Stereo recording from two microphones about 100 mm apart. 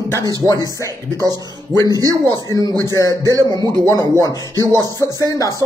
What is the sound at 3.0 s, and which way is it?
Music, 35° left (ahead or behind).